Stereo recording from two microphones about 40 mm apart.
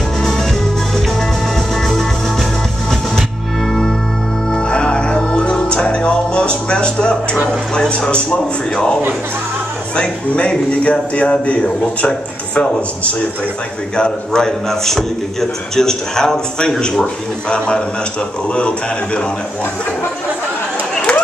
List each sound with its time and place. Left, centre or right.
0.2 s music: centre
1.8 s music: centre
4.5 s music: left
9.9 s a man's voice: left
21.1 s a sound: left